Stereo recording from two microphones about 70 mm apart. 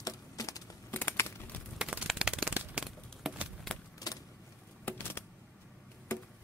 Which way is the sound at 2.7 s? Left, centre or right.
Centre.